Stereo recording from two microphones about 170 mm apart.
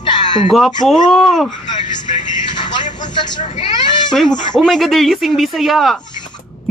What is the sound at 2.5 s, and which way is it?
Vehicle, 25° left (ahead or behind).